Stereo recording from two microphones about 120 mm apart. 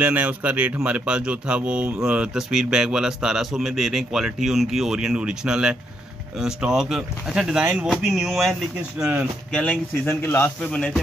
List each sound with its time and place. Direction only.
0.0 s a man's voice: 15° right (ahead or behind)
9.0 s speech: 15° right (ahead or behind)
9.5 s speech: 5° left (ahead or behind)
10.6 s a man's voice: 5° left (ahead or behind)